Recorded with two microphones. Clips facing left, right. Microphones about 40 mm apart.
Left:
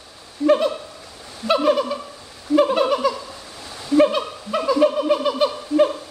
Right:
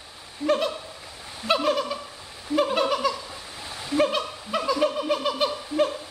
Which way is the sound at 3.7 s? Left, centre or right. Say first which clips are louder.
Left 8 dB; centre.